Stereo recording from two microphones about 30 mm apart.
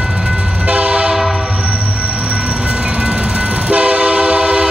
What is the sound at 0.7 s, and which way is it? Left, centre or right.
Train, right.